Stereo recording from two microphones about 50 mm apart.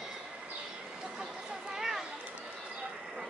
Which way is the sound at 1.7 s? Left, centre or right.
Centre.